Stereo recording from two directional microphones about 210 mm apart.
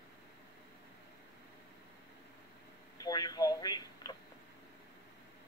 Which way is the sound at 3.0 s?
20° left (ahead or behind).